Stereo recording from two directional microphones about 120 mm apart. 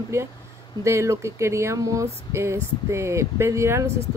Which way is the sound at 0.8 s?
25° right (ahead or behind).